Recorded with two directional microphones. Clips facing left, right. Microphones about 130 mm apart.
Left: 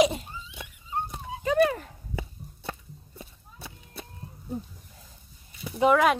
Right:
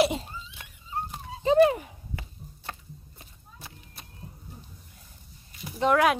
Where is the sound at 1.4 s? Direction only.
25° right (ahead or behind).